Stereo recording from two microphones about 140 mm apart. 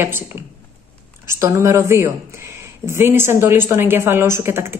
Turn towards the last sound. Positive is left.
turn(degrees=-20)  # may be behind; listen again after turning